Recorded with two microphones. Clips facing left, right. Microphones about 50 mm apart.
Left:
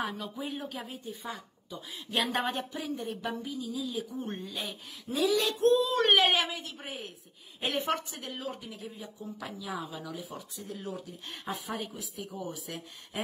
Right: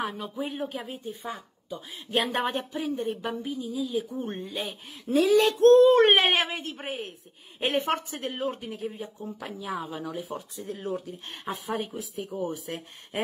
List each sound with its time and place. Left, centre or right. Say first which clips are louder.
0.0 s a woman's voice: right 3 dB; right
5.1 s speech: right 10 dB; right
5.6 s speech: right 10 dB; right
5.9 s a woman's voice: right 4 dB; right